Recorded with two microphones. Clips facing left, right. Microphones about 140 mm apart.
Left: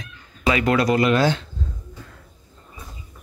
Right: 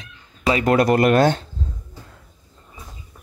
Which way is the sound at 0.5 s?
45° right (ahead or behind).